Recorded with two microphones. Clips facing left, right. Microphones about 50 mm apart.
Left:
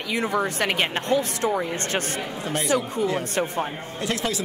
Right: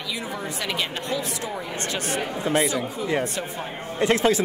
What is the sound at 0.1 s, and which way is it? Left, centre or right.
Speech, left.